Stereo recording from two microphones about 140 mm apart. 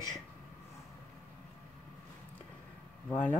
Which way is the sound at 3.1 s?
10° left (ahead or behind).